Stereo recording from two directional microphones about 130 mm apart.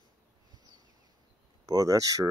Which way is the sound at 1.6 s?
25° right (ahead or behind).